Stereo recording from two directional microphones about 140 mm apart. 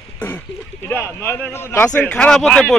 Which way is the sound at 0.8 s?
15° left (ahead or behind).